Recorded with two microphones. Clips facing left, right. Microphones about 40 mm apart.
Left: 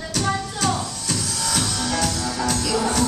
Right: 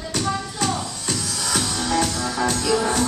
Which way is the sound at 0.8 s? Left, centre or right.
Centre.